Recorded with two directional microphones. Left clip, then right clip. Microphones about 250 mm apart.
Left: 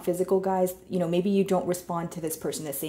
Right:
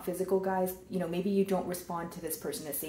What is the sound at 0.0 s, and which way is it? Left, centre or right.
Speech, left.